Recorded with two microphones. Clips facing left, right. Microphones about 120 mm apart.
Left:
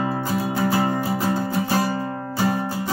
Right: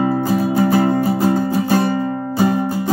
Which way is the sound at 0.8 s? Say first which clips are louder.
Right 7 dB; 55° right (ahead or behind).